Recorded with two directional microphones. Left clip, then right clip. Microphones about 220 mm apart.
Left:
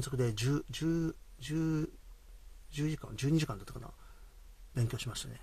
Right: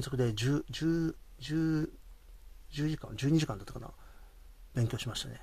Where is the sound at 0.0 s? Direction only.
15° right (ahead or behind).